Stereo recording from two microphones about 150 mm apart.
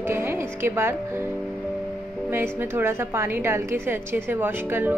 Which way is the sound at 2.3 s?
15° right (ahead or behind).